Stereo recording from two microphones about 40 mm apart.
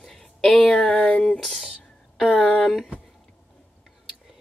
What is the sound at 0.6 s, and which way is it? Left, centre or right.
Speech, centre.